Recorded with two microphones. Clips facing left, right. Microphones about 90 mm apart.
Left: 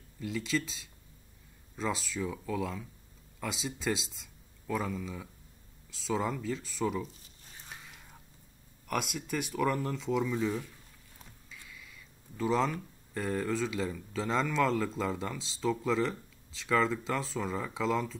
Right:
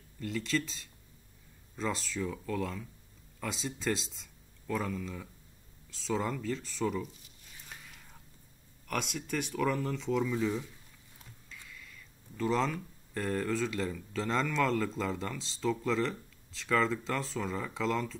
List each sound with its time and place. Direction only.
0.2 s speech: 5° left (ahead or behind)
7.7 s whispering: 5° left (ahead or behind)
8.8 s speech: 5° left (ahead or behind)